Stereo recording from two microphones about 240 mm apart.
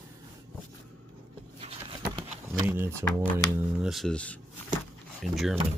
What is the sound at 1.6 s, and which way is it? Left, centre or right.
Patter, right.